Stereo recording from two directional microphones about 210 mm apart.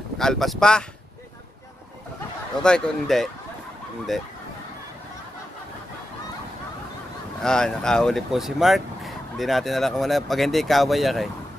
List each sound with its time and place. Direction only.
0.2 s speech: centre (ahead or behind)
2.6 s speech: 5° left (ahead or behind)
7.4 s speech: 5° left (ahead or behind)